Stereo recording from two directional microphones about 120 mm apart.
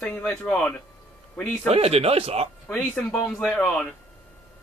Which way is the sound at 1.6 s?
55° right (ahead or behind).